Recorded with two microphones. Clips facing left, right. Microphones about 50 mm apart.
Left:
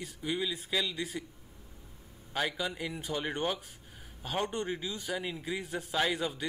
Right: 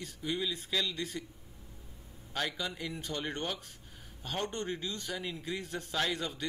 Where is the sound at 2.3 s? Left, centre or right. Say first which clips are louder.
Left 3 dB; centre.